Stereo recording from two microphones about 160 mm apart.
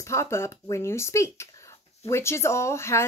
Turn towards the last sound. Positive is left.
turn(degrees=15)  # may be behind; listen again after turning